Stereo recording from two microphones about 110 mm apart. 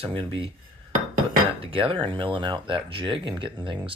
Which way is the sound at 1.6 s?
55° right (ahead or behind).